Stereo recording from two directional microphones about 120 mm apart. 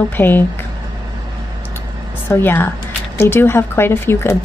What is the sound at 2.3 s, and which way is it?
Speech, 20° left (ahead or behind).